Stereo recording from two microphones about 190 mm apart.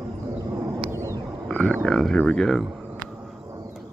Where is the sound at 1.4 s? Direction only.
5° left (ahead or behind).